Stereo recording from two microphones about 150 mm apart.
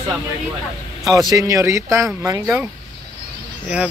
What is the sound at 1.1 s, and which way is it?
Speech, 25° right (ahead or behind).